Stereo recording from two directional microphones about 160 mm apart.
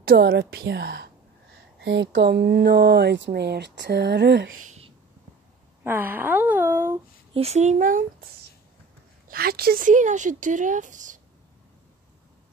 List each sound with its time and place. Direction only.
0.0 s a woman's voice: 70° right (ahead or behind); by 4.5 s 90° right
5.9 s speech: 10° right (ahead or behind)
7.3 s speech: 40° right (ahead or behind)
9.3 s speech: 70° right (ahead or behind); by 11.1 s 50° right (ahead or behind)